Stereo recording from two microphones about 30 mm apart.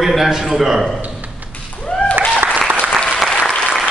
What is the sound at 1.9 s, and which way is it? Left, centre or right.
Applause, left.